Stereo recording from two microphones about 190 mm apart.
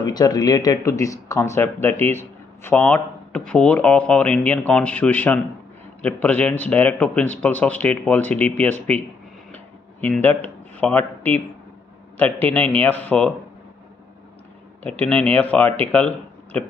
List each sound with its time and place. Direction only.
0.0 s speech: 20° left (ahead or behind)
9.5 s a sound: 10° left (ahead or behind)
12.2 s speech: 10° left (ahead or behind)
14.8 s speech: 10° left (ahead or behind)